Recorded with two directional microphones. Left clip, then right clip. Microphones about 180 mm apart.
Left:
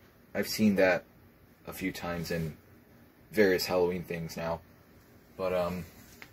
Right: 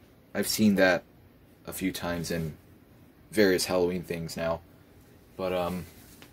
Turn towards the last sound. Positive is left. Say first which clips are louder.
# right 1 dB
turn(degrees=-20)  # may be behind; listen again after turning